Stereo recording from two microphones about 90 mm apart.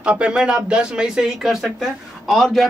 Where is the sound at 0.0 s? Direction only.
10° right (ahead or behind).